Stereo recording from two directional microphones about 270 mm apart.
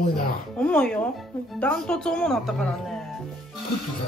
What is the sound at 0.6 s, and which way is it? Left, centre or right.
Speech, centre.